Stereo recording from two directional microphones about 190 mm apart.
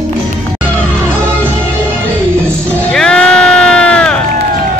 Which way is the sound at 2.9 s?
5° left (ahead or behind).